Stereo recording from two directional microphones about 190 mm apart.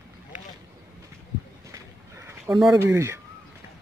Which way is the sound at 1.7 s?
15° right (ahead or behind).